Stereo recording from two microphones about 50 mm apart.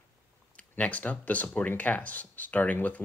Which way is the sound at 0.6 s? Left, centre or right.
Left.